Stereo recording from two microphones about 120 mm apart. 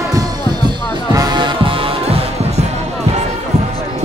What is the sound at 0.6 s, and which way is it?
Music, 35° right (ahead or behind).